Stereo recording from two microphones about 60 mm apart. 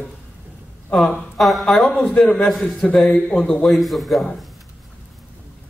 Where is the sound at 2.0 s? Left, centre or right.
Centre.